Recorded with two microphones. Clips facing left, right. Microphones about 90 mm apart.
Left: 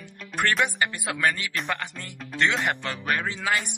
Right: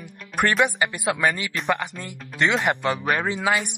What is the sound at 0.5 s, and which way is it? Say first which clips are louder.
Speech: right 3 dB; 10° right (ahead or behind).